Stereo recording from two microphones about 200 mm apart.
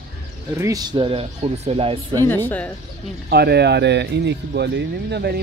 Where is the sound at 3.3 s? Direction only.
55° right (ahead or behind).